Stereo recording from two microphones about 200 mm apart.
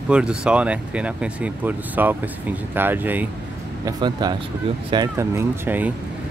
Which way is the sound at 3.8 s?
20° right (ahead or behind).